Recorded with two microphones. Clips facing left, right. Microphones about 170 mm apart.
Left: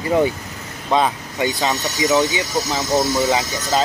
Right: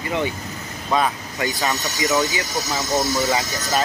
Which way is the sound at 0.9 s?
20° left (ahead or behind).